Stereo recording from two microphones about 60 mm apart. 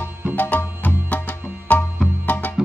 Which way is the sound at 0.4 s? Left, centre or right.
Left.